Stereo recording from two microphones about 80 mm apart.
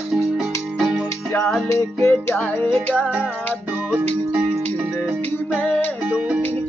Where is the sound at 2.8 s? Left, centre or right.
Centre.